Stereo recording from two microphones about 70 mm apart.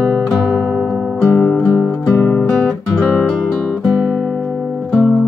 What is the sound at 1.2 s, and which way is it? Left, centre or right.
Music, left.